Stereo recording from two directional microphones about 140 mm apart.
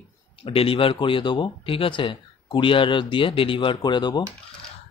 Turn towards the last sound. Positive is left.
turn(degrees=30)  # may be behind; listen again after turning